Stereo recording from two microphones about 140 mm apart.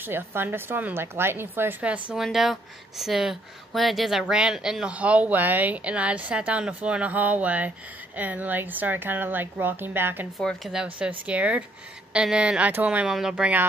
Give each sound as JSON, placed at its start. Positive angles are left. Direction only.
{"t": 0.0, "sound": "a woman's voice", "side_deg": -15}
{"t": 10.4, "sound": "a woman's voice", "side_deg": 0}